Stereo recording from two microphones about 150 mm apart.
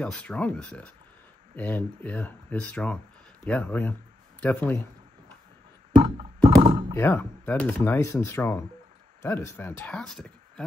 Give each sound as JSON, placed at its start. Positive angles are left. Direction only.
{"t": 0.0, "sound": "speech", "side_deg": 5}
{"t": 5.9, "sound": "a sound", "side_deg": -35}
{"t": 7.0, "sound": "speech", "side_deg": 15}